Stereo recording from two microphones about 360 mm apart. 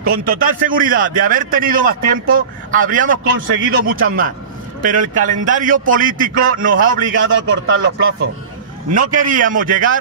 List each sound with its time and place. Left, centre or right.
0.0 s a man's voice: right
3.3 s a man's voice: right
7.2 s a man's voice: right
9.1 s a man's voice: right